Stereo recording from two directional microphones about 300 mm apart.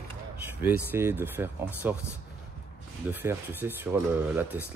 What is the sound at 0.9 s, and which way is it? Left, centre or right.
Speech, centre.